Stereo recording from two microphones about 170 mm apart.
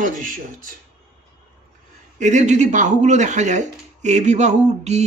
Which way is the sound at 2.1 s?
45° right (ahead or behind).